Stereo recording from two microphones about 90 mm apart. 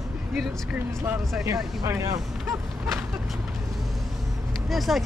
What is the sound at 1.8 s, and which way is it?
Speech, 35° right (ahead or behind).